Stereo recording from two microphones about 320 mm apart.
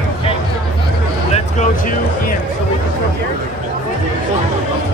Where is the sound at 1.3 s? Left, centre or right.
Left.